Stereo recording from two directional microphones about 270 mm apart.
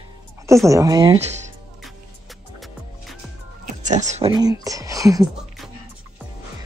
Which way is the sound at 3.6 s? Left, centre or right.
Right.